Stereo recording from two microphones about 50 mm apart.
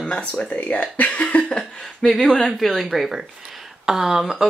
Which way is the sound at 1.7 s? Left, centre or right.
Centre.